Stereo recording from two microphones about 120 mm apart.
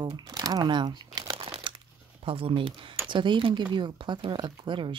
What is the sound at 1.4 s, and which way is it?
Crumpling, 45° right (ahead or behind).